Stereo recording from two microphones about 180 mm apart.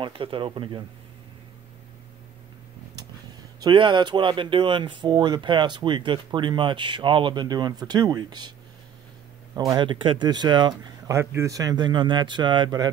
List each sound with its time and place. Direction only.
0.0 s speech: 30° right (ahead or behind)
3.6 s speech: 25° right (ahead or behind)